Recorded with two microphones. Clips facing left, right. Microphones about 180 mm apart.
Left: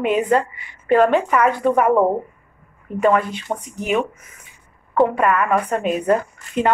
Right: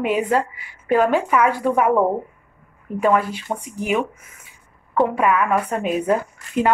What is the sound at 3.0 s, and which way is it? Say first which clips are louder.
A woman's voice: left 1 dB; 5° right (ahead or behind).